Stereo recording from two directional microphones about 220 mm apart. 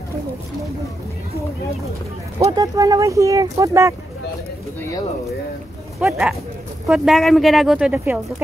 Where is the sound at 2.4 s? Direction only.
15° right (ahead or behind).